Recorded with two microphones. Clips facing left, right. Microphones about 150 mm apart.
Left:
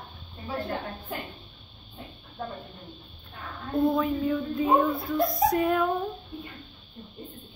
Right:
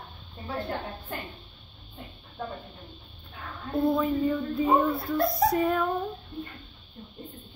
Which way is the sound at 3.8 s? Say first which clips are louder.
Even; 5° left (ahead or behind).